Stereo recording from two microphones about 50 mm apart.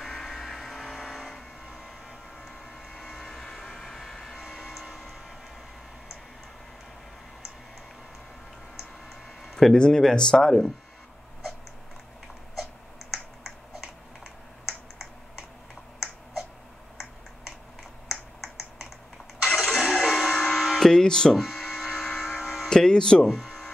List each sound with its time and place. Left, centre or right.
0.0 s vehicle: centre
3.0 s vehicle: centre
4.5 s music: centre
9.4 s a sound: centre
9.8 s speech: centre
14.7 s computer keyboard: centre
19.4 s a sound: centre
20.4 s music: centre
20.9 s a sound: centre
21.4 s hum: centre
22.7 s speech: centre
23.4 s a sound: centre